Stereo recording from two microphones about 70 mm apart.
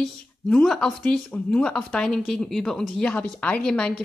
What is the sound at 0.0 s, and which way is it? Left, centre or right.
Speech, centre.